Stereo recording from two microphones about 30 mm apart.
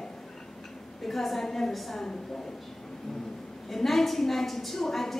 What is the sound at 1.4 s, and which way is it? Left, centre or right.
Speech, centre.